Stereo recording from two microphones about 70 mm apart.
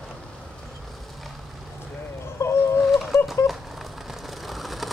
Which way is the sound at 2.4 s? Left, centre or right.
Left.